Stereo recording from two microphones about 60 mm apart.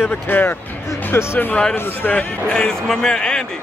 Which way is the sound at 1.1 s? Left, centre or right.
Left.